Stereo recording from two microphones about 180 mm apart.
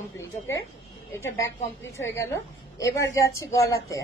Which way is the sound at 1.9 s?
15° left (ahead or behind).